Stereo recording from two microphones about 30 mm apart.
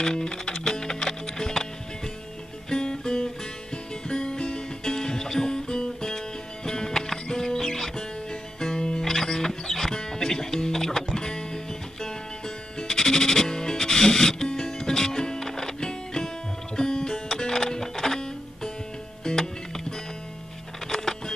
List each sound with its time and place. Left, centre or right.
0.0 s music: left
2.7 s music: left
9.0 s music: centre
20.9 s a sound: centre